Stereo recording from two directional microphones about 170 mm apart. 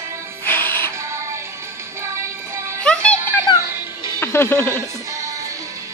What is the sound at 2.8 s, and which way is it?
Music, 5° left (ahead or behind).